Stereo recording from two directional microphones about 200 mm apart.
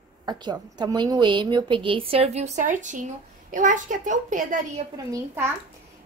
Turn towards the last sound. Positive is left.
turn(degrees=-15)  # may be behind; listen again after turning